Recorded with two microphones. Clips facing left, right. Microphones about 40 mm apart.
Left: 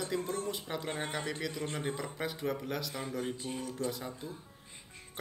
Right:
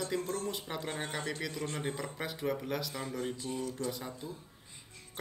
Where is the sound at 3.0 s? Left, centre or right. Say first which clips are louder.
Even; centre.